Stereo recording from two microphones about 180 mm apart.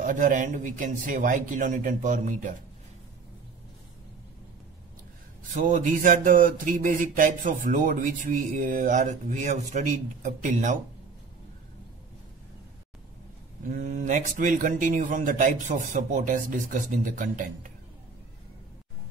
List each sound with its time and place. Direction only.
0.0 s speech: 45° right (ahead or behind)
5.4 s speech: 45° right (ahead or behind)
13.7 s speech: 45° right (ahead or behind)